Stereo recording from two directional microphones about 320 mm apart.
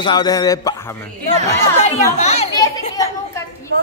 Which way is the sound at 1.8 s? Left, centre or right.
Centre.